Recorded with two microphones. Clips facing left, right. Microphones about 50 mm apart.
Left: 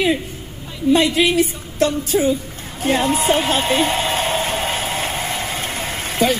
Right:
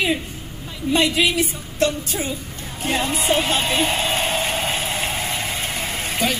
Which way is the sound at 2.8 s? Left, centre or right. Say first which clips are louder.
Left 5 dB; left.